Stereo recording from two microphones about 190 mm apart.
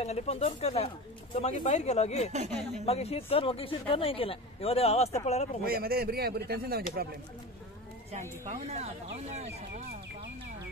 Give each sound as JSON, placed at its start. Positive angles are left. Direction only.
{"t": 0.0, "sound": "speech", "side_deg": 35}
{"t": 5.6, "sound": "speech", "side_deg": -55}
{"t": 8.1, "sound": "speech", "side_deg": -35}